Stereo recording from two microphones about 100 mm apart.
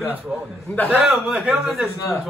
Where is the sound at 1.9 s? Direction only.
30° left (ahead or behind).